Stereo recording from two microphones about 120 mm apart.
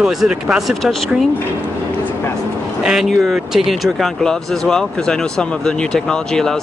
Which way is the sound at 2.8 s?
5° right (ahead or behind).